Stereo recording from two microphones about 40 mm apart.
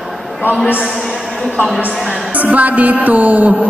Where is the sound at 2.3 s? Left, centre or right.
Right.